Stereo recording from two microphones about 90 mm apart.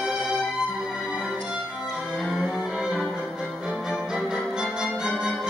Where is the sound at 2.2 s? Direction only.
Centre (ahead or behind).